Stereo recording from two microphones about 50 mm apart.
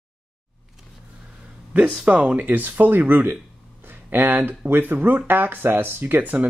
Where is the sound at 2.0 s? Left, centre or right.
Right.